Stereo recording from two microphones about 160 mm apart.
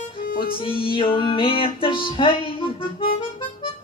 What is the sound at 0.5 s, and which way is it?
Music, 35° left (ahead or behind).